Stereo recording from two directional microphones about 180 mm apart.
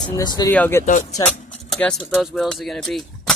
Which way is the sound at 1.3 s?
45° left (ahead or behind).